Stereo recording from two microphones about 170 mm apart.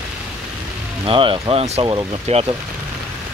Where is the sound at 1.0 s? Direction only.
30° right (ahead or behind).